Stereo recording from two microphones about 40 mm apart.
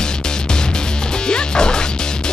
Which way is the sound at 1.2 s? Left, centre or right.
Centre.